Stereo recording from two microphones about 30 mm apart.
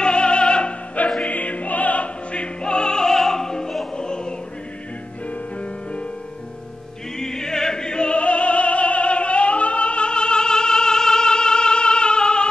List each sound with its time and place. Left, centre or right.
0.0 s opera: left
1.2 s music: left
2.3 s opera: left; by 3.7 s centre
3.9 s music: left
5.6 s music: left
7.2 s opera: left
8.2 s music: left